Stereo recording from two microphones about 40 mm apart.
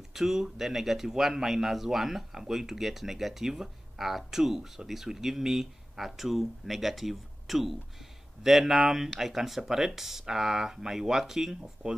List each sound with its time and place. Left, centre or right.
0.1 s speech: centre